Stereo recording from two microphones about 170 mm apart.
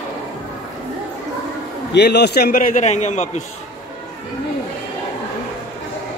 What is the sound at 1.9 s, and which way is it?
A man's voice, 80° left.